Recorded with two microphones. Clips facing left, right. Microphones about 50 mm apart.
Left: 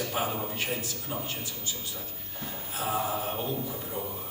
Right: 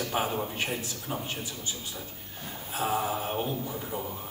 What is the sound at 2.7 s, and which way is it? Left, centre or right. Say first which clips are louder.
A man's voice: right 2 dB; centre.